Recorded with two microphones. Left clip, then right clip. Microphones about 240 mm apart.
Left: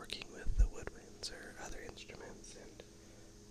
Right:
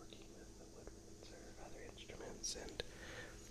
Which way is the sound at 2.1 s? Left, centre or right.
Centre.